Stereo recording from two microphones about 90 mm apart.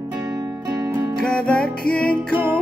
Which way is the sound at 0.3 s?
40° right (ahead or behind).